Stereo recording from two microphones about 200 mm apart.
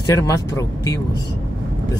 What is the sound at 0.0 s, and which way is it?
Speech, 15° left (ahead or behind).